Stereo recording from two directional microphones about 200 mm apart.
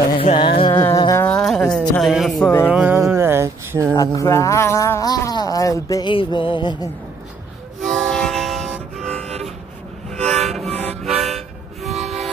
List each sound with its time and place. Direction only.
0.2 s music: 30° left (ahead or behind)
0.7 s music: 15° left (ahead or behind)
2.7 s music: 10° right (ahead or behind)
3.9 s speech: 15° left (ahead or behind)
7.8 s music: centre (ahead or behind)
10.1 s train: centre (ahead or behind)
10.7 s harmonica: 30° right (ahead or behind)
11.2 s toot: centre (ahead or behind)